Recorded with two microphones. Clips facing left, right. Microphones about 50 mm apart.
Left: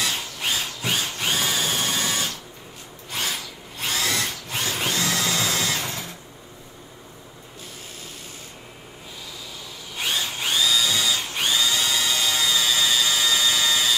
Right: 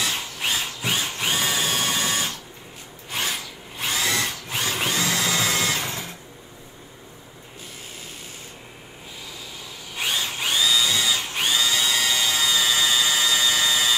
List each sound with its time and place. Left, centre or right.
0.0 s a sound: centre
0.9 s drill: centre
5.5 s printer: right
9.9 s drill: centre
11.8 s helicopter: right